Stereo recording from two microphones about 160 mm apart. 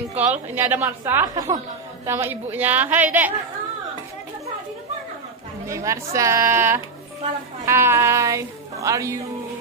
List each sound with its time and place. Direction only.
0.1 s a woman's voice: 10° right (ahead or behind)
5.7 s a woman's voice: 20° right (ahead or behind)